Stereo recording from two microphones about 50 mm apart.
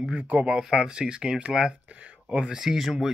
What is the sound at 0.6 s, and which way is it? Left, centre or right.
Speech, centre.